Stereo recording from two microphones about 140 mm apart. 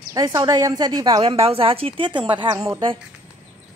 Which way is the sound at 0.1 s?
25° right (ahead or behind).